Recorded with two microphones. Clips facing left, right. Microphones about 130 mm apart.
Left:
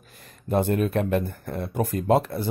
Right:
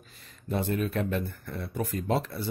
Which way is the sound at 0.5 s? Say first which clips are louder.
Left 6 dB; 55° left (ahead or behind).